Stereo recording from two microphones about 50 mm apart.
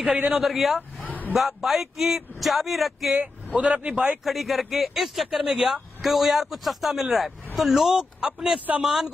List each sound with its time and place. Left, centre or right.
0.0 s a man's voice: right
0.4 s speech: centre
3.5 s a man's voice: right
4.2 s speech: centre